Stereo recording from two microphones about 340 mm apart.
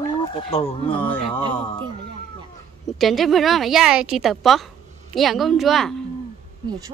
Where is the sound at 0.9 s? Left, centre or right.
Centre.